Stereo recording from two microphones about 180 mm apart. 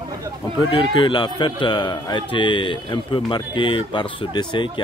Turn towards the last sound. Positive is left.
turn(degrees=25)  # may be behind; listen again after turning